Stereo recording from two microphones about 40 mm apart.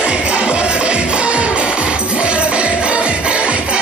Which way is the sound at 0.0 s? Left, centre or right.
Right.